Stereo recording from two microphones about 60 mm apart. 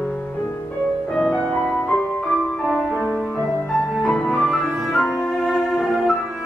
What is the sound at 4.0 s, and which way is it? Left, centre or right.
Music, centre.